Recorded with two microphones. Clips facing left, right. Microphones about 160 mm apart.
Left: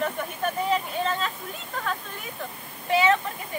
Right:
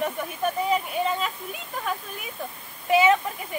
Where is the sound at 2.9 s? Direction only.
15° right (ahead or behind).